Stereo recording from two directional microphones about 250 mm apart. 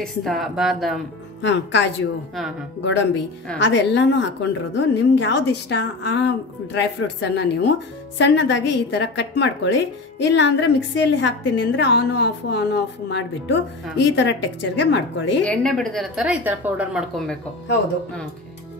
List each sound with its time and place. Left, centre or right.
0.0 s a woman's voice: centre
1.4 s a woman's voice: left
15.4 s a woman's voice: centre